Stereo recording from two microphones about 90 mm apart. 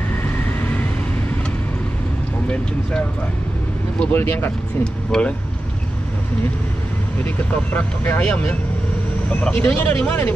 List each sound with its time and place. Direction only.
0.2 s vehicle: 20° left (ahead or behind)
2.5 s speech: 15° left (ahead or behind)
5.1 s speech: 5° left (ahead or behind)
7.2 s speech: 20° left (ahead or behind)
9.6 s speech: 20° left (ahead or behind)